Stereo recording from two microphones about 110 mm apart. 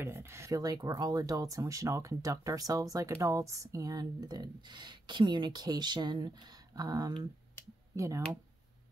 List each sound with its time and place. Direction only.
0.0 s speech: 25° right (ahead or behind)